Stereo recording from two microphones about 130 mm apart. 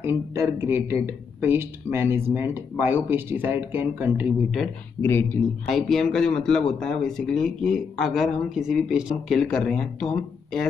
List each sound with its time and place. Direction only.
0.0 s speech: 20° right (ahead or behind)
5.0 s speech: 15° left (ahead or behind)
5.7 s speech: centre (ahead or behind)